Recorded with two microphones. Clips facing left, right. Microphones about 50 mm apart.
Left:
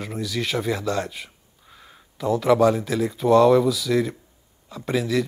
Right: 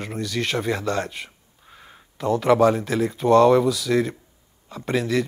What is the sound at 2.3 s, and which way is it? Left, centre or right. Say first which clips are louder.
Speech: right 1 dB; centre.